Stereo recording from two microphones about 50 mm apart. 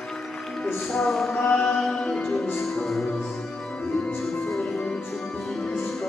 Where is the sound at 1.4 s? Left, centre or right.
Left.